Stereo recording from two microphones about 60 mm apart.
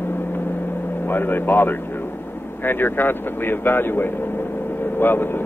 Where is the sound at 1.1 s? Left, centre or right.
Left.